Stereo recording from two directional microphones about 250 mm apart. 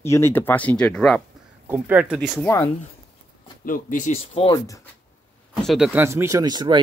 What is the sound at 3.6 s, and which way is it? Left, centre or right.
Speech, left.